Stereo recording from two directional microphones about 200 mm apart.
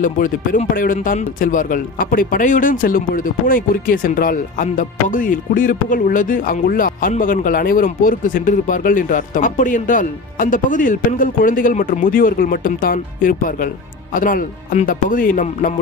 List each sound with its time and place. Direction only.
0.0 s speech: 40° left (ahead or behind)